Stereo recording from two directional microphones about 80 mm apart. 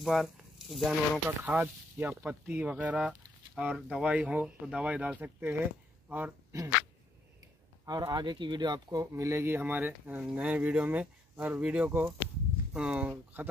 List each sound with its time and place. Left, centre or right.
0.0 s speech: centre
1.4 s speech: right
6.5 s speech: right
7.8 s speech: right
8.8 s speech: right
9.1 s speech: right; by 13.1 s centre
13.1 s speech: right